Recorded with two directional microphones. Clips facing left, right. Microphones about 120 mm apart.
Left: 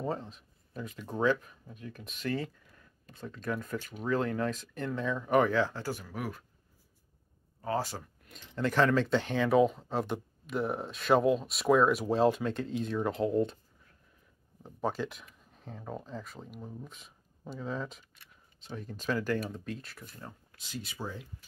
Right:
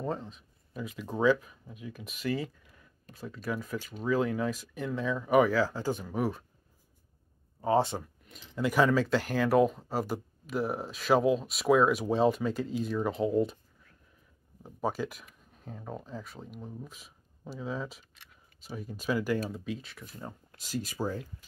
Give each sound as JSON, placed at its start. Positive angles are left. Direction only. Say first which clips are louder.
{"t": 0.0, "sound": "speech", "louder": "even", "side_deg": 0}
{"t": 6.1, "sound": "speech", "louder": "right 7 dB", "side_deg": -30}
{"t": 7.6, "sound": "speech", "louder": "right 7 dB", "side_deg": -25}
{"t": 8.3, "sound": "speech", "louder": "right 1 dB", "side_deg": -5}
{"t": 14.6, "sound": "speech", "louder": "right 1 dB", "side_deg": -10}
{"t": 20.5, "sound": "speech", "louder": "right 7 dB", "side_deg": -40}